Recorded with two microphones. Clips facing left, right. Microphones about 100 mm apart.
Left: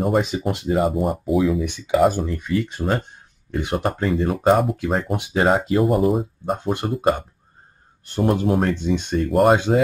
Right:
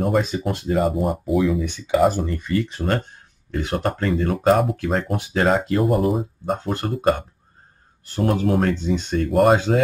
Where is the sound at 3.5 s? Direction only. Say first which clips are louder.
Left 1 dB; 15° left (ahead or behind).